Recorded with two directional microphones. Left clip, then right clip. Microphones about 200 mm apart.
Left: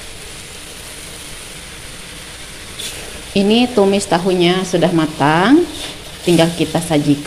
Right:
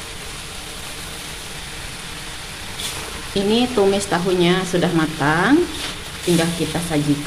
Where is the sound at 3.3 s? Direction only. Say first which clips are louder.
Left 5 dB; 25° left (ahead or behind).